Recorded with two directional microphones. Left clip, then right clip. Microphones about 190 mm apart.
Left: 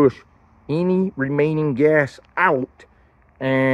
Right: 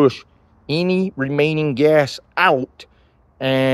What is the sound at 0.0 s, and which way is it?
Speech, 35° right (ahead or behind).